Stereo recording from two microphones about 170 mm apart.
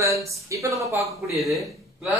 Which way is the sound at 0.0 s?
20° right (ahead or behind).